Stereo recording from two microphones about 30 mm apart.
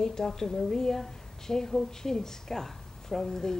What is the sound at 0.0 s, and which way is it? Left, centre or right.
A woman's voice, centre.